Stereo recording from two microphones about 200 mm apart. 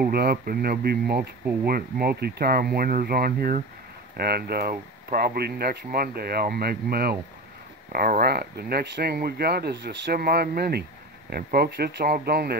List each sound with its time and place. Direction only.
0.0 s speech: 50° right (ahead or behind)